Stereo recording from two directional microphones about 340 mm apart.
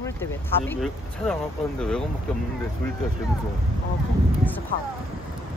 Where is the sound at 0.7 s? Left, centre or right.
Centre.